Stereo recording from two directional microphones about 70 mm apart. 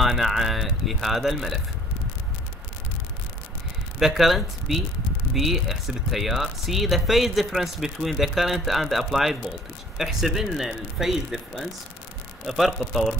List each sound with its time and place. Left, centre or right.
0.0 s speech: centre
4.0 s speech: centre